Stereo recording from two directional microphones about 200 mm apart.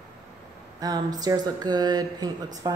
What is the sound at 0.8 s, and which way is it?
Speech, 20° right (ahead or behind).